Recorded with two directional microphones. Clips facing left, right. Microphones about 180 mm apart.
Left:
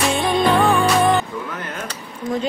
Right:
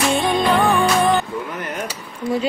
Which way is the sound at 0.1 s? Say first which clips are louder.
Even; centre (ahead or behind).